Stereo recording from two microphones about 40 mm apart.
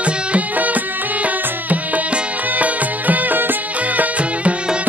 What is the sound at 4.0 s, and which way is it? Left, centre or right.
Music, right.